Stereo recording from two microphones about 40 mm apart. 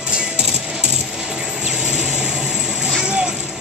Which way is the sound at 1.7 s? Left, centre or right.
Right.